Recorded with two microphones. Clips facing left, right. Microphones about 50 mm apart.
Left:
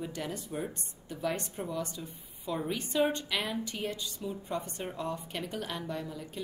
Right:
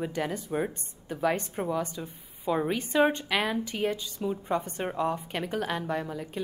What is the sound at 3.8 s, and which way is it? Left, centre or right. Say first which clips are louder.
Speech: right 9 dB; right.